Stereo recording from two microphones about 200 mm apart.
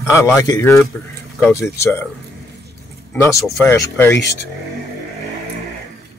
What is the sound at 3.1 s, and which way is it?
Speech, 15° left (ahead or behind).